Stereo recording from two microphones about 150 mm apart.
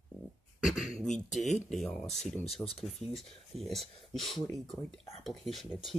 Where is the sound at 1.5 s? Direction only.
5° left (ahead or behind).